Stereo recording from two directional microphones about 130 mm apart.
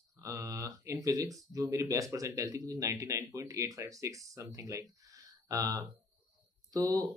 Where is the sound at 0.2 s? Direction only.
25° right (ahead or behind).